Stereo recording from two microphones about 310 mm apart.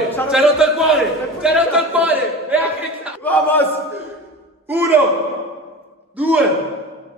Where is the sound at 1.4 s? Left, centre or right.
Centre.